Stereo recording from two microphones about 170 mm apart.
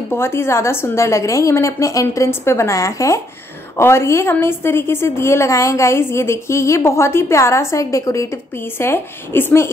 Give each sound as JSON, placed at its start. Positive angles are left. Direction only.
{"t": 0.1, "sound": "a woman's voice", "side_deg": 15}